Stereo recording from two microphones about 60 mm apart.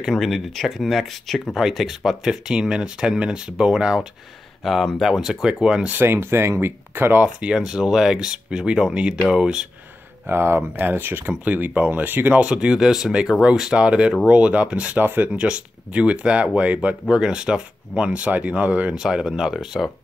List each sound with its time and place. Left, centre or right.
0.0 s speech: centre
4.6 s speech: centre
6.0 s speech: right
7.5 s speech: centre
10.2 s speech: right
12.4 s speech: centre
15.0 s speech: right
15.2 s speech: centre
18.9 s speech: centre